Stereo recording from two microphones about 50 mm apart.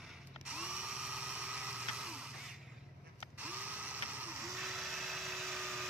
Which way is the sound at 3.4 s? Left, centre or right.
Right.